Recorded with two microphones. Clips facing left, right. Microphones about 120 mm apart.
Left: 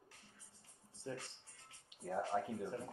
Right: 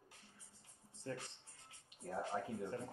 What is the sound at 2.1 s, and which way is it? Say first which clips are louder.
Speech: left 3 dB; 25° left (ahead or behind).